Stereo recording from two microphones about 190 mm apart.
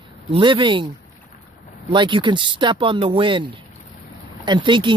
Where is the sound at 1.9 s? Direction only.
25° right (ahead or behind).